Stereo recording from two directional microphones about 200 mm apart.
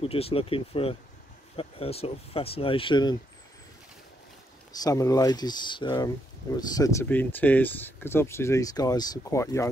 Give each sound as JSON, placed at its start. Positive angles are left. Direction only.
{"t": 0.0, "sound": "speech", "side_deg": 30}
{"t": 4.7, "sound": "speech", "side_deg": 15}